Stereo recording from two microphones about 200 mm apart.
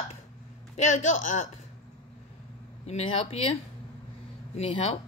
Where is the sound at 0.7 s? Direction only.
35° left (ahead or behind).